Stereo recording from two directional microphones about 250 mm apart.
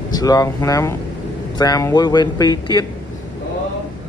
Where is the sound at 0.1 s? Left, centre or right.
Centre.